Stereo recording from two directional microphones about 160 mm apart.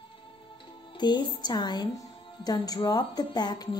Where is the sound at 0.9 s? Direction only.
30° left (ahead or behind).